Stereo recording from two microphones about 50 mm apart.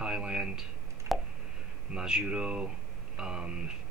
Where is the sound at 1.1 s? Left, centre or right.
Right.